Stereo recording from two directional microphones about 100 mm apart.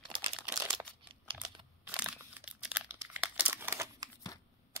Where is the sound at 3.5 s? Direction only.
25° right (ahead or behind).